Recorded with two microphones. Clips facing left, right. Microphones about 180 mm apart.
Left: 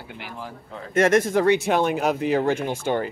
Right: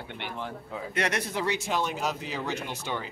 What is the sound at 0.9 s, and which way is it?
Speech, 45° left (ahead or behind).